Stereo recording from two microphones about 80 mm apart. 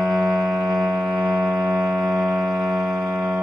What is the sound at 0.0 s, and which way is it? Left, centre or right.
Music, centre.